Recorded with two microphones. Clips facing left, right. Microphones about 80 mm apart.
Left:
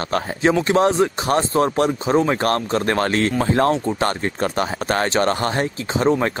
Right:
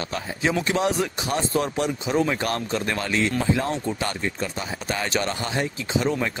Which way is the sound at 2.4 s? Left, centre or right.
Left.